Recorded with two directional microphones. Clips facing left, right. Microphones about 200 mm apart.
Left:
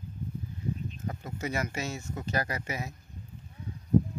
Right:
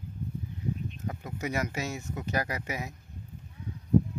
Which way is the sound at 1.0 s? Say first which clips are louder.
Even; 15° right (ahead or behind).